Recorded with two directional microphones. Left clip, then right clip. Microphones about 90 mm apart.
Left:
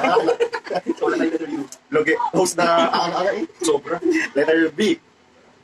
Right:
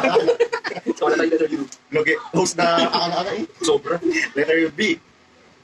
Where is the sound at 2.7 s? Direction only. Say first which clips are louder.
Left 1 dB; 40° right (ahead or behind).